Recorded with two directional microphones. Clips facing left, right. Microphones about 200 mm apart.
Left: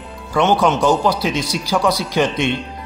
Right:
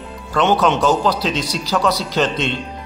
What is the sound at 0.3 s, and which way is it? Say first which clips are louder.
Speech: left 1 dB; 15° left (ahead or behind).